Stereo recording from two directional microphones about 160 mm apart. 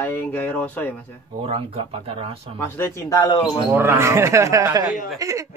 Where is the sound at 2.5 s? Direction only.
15° left (ahead or behind).